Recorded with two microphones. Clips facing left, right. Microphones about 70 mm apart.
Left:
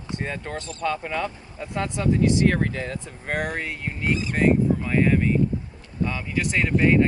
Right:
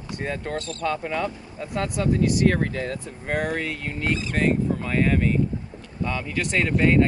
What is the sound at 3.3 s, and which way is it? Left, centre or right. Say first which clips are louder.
Speech: right 2 dB; left.